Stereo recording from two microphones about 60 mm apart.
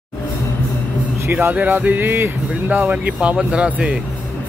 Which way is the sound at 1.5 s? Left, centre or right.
Right.